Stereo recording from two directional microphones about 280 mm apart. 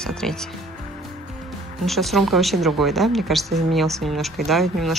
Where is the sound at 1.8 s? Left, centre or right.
Centre.